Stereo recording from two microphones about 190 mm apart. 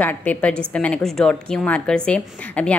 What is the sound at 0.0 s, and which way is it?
A woman's voice, 10° left (ahead or behind).